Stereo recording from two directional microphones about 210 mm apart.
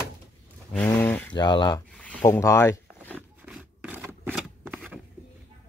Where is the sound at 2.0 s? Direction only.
10° left (ahead or behind).